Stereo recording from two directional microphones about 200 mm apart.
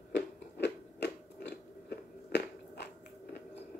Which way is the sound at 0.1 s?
60° left (ahead or behind).